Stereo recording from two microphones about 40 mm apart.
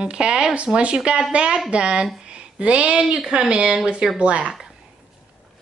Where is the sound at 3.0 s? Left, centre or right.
Centre.